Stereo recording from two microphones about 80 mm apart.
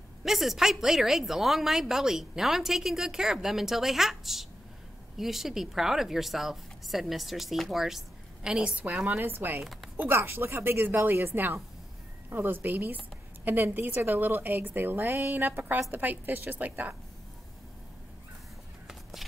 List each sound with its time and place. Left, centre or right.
0.2 s a woman's voice: centre; by 16.9 s right